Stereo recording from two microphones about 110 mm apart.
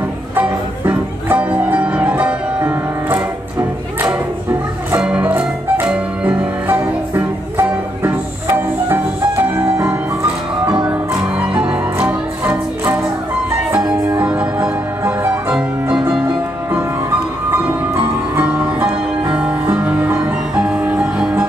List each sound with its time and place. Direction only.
0.4 s music: 15° right (ahead or behind)
10.9 s music: 10° right (ahead or behind)
14.2 s music: 10° right (ahead or behind)
15.5 s piano: 10° right (ahead or behind)
17.5 s music: 20° right (ahead or behind)
18.4 s music: 10° right (ahead or behind)